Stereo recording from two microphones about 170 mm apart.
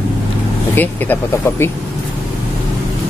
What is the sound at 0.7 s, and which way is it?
Speech, 10° left (ahead or behind).